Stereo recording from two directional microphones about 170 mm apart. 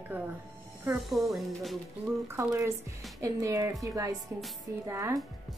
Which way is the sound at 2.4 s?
15° right (ahead or behind).